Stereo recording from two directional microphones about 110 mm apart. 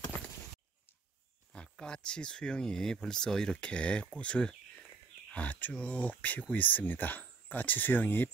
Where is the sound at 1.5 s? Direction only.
10° left (ahead or behind).